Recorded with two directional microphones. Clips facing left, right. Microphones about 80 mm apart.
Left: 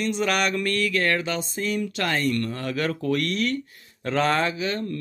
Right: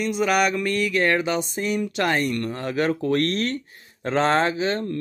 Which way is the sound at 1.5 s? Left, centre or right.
Centre.